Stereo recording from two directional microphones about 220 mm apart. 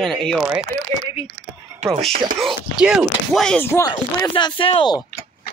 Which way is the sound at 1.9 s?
Centre (ahead or behind).